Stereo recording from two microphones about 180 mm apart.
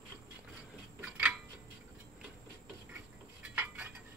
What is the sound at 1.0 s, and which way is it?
Tick-tock, 5° right (ahead or behind).